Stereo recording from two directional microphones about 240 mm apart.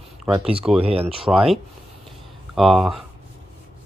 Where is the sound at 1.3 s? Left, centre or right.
Centre.